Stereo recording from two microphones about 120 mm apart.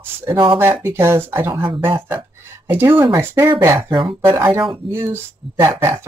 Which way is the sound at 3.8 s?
45° right (ahead or behind).